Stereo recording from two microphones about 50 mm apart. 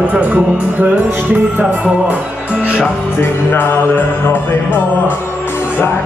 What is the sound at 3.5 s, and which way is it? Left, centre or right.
Music, left.